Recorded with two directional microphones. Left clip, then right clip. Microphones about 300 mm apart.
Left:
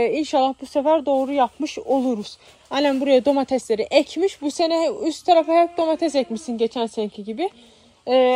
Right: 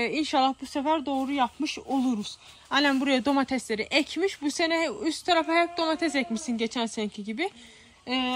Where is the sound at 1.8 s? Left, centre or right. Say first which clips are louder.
Left 10 dB; right.